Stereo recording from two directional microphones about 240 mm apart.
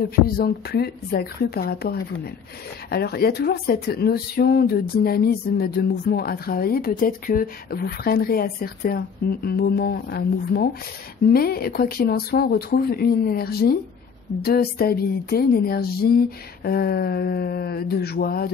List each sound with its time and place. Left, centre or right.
0.4 s speech: left